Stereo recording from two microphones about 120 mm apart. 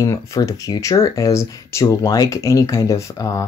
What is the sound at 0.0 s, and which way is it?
Speech, 30° left (ahead or behind).